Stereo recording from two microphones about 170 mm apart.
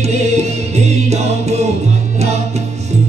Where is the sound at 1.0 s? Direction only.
40° right (ahead or behind).